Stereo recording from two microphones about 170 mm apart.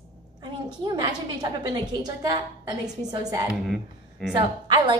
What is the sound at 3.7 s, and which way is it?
Speech, centre (ahead or behind).